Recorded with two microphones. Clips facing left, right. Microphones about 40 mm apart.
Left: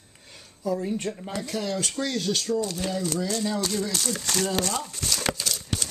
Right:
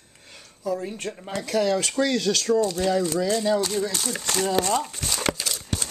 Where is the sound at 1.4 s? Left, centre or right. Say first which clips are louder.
Right 7 dB; right.